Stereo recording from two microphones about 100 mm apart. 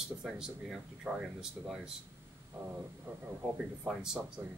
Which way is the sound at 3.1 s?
25° right (ahead or behind).